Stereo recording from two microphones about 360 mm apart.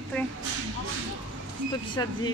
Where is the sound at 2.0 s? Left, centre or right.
Centre.